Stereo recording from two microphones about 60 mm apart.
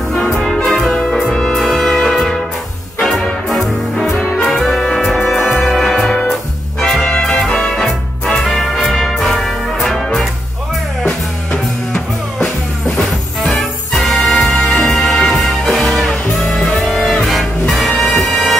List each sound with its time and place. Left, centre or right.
0.3 s music: centre
3.4 s music: centre
11.5 s music: centre
13.5 s music: centre